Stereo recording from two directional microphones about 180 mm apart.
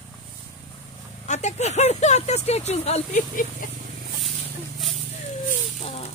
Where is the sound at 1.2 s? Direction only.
40° left (ahead or behind).